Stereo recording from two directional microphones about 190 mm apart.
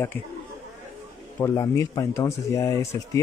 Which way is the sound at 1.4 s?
15° left (ahead or behind).